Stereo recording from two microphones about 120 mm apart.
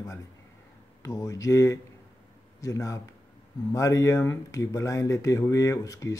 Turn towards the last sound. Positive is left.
turn(degrees=30)  # may be behind; listen again after turning